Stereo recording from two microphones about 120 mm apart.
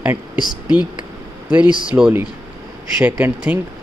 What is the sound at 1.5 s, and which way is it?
Speech, 10° right (ahead or behind).